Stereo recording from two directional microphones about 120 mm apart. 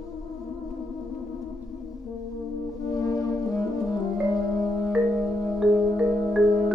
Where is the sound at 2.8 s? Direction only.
30° left (ahead or behind).